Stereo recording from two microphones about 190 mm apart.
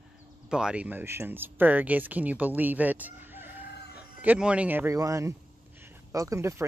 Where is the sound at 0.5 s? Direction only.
5° right (ahead or behind).